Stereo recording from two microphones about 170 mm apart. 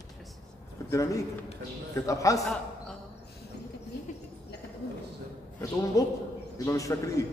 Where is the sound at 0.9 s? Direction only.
20° left (ahead or behind).